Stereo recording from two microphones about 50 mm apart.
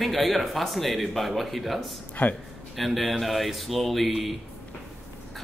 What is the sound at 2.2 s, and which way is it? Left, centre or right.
Speech, left.